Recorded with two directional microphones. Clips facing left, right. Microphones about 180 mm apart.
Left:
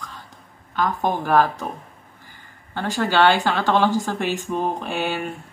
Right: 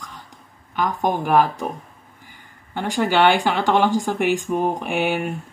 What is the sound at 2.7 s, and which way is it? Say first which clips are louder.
Speech: right 1 dB; 15° right (ahead or behind).